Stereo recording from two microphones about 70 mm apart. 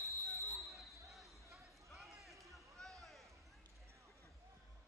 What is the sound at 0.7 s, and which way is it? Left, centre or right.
Basketball bounce, centre.